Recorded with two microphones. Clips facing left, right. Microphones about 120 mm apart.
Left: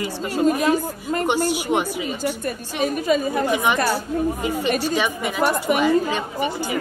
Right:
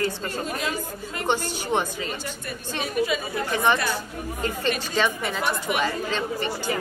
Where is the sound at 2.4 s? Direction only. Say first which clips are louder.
Left 7 dB; 45° left (ahead or behind).